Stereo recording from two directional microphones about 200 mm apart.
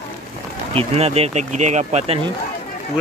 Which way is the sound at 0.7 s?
30° right (ahead or behind).